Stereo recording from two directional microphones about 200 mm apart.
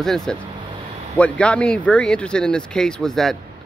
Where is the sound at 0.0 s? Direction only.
Centre (ahead or behind).